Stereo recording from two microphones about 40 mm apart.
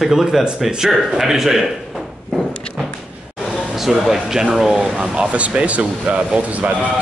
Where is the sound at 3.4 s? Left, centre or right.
Centre.